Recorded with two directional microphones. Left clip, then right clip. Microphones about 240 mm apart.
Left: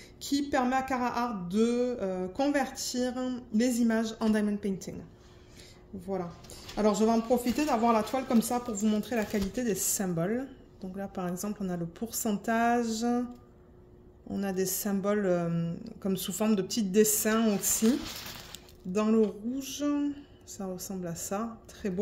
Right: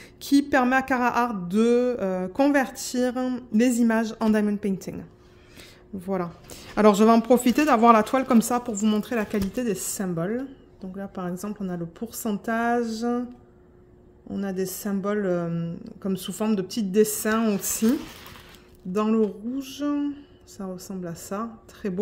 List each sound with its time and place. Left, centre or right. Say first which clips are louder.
0.2 s a sound: right 8 dB; right
9.9 s speech: right 3 dB; centre
14.3 s speech: right 2 dB; centre